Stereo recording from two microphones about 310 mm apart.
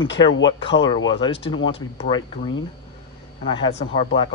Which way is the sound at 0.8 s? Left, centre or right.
Centre.